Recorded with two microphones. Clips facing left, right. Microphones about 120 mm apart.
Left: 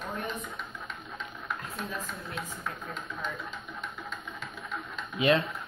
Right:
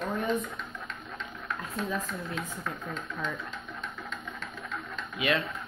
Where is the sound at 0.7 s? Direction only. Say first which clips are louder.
Right 1 dB; centre (ahead or behind).